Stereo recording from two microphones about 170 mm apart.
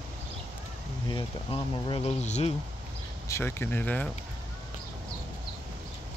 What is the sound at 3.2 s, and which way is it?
Speech, 15° left (ahead or behind).